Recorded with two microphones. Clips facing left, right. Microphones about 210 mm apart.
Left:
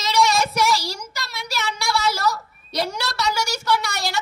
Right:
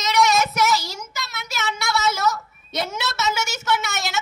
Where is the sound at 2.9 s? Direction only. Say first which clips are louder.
Even; 20° right (ahead or behind).